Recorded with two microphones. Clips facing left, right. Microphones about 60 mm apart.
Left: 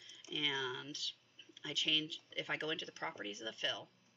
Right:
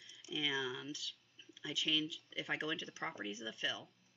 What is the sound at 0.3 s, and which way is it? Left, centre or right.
Speech, centre.